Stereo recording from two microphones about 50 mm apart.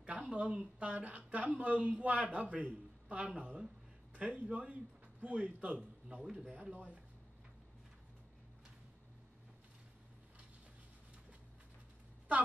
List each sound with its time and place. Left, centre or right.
0.0 s a man's voice: right